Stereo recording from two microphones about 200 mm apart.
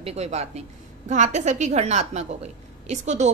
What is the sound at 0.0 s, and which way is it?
A woman's voice, 30° right (ahead or behind).